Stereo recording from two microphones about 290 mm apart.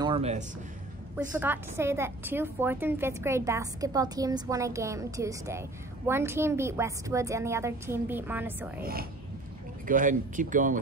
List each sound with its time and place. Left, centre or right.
0.0 s speech: centre
1.4 s a woman's voice: centre
9.8 s speech: right